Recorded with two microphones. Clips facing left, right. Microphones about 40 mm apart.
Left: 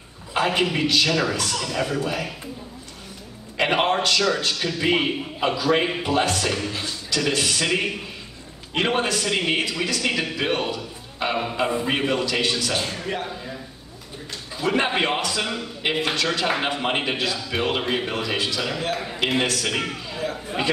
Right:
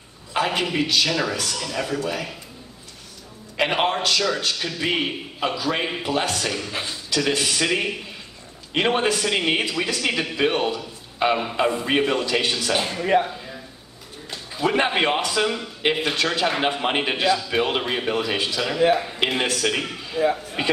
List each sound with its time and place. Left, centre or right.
0.3 s a man's voice: centre
3.5 s a man's voice: centre
6.7 s a man's voice: right
7.2 s a man's voice: centre
14.5 s a man's voice: centre